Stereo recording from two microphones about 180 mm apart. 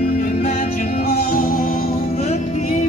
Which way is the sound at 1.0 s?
60° left (ahead or behind).